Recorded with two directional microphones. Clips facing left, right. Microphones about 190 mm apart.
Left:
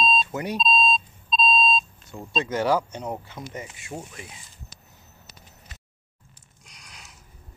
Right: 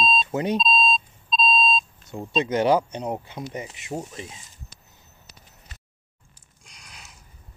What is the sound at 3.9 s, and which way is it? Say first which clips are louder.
Speech: right 5 dB; 30° right (ahead or behind).